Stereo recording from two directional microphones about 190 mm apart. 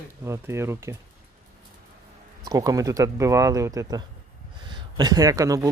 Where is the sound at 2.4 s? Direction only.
20° right (ahead or behind).